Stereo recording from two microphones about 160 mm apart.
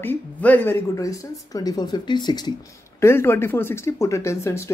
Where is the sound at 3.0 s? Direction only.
15° left (ahead or behind).